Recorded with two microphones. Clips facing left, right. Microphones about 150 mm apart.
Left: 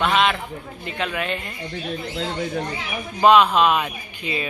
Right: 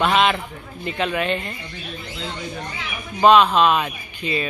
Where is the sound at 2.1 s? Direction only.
50° left (ahead or behind).